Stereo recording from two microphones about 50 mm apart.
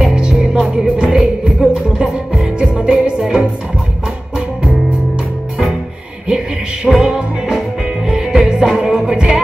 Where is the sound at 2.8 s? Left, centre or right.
Centre.